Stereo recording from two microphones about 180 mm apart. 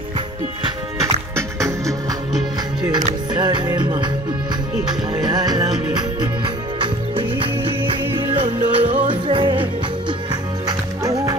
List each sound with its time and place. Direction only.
0.9 s music: 15° right (ahead or behind)
3.3 s music: 25° right (ahead or behind)
5.2 s music: 20° right (ahead or behind)
10.7 s music: 20° right (ahead or behind)